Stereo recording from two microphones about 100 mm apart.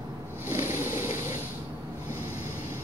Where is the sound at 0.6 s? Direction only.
30° right (ahead or behind).